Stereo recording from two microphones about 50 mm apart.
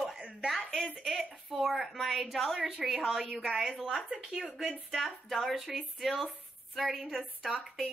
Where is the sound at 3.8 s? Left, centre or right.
Centre.